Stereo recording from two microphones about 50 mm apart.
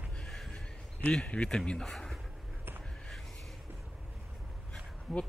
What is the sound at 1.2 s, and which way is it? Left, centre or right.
Speech, left.